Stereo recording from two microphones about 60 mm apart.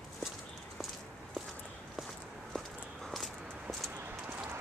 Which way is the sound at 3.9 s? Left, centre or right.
Right.